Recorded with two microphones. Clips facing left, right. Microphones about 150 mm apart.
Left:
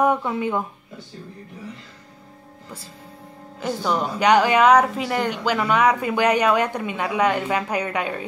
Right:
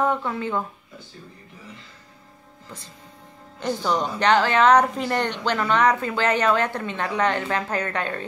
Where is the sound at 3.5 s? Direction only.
5° left (ahead or behind).